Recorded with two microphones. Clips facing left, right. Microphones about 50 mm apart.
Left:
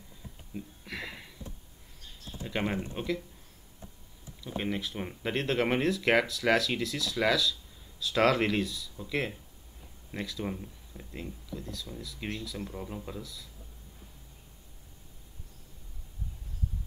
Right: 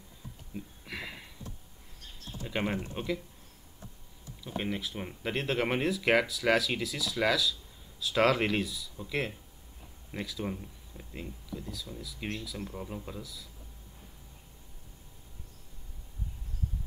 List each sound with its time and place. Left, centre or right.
0.6 s a sound: centre
2.4 s speech: centre
4.4 s speech: centre